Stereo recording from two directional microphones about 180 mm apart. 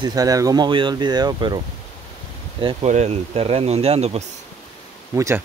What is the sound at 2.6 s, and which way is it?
Speech, 40° right (ahead or behind).